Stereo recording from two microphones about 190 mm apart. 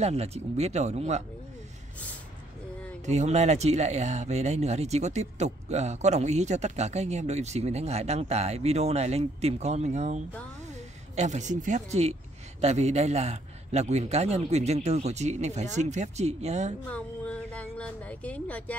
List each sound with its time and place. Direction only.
0.0 s speech: 35° right (ahead or behind)
3.1 s speech: 35° right (ahead or behind)
16.9 s a sound: 5° left (ahead or behind)